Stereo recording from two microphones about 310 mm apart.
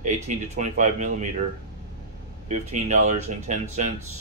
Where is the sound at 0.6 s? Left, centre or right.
Right.